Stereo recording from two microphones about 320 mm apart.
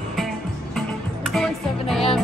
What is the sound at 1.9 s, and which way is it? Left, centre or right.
Speech, centre.